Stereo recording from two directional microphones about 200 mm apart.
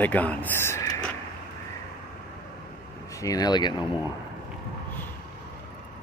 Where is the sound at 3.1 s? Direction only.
15° left (ahead or behind).